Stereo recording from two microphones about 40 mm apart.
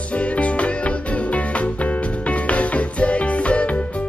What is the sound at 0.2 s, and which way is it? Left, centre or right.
Music, left.